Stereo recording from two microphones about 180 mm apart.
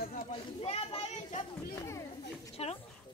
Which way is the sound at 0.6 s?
35° left (ahead or behind).